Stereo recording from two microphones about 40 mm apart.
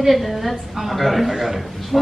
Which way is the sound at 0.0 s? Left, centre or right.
Centre.